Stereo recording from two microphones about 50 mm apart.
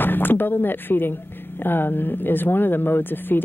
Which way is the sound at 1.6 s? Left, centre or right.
Left.